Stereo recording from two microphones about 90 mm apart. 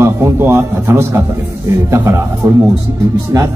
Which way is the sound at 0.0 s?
30° right (ahead or behind).